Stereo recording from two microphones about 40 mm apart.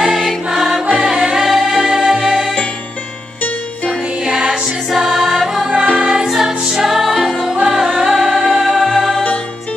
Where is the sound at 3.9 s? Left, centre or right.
Right.